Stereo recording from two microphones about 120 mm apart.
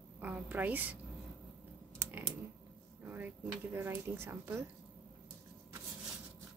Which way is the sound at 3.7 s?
20° right (ahead or behind).